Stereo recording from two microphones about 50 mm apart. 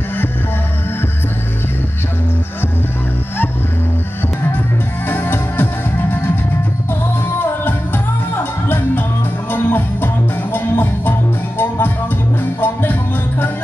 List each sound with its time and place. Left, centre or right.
5.0 s music: left
8.6 s music: left